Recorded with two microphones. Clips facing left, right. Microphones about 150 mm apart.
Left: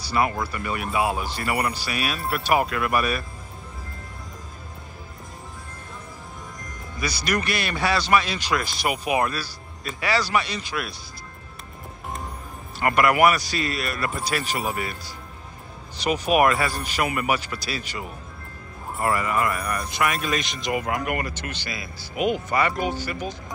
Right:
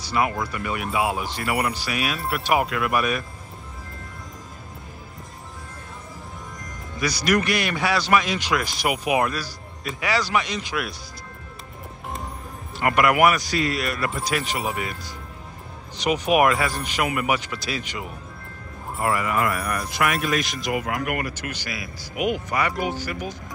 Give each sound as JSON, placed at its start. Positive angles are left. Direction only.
{"t": 0.0, "sound": "speech", "side_deg": -15}
{"t": 7.1, "sound": "speech", "side_deg": -10}
{"t": 12.7, "sound": "speech", "side_deg": -15}
{"t": 13.5, "sound": "a man's voice", "side_deg": -90}
{"t": 13.8, "sound": "speech", "side_deg": -15}